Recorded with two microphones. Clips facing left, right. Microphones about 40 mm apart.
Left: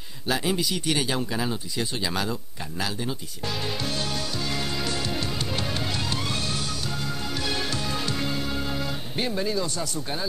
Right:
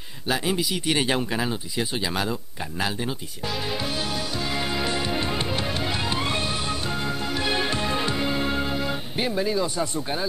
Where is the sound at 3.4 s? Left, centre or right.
Centre.